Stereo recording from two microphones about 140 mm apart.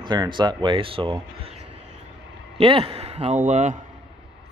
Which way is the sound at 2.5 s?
40° right (ahead or behind).